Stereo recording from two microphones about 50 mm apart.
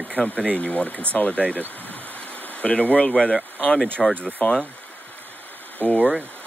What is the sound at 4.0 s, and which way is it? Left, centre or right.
Speech, centre.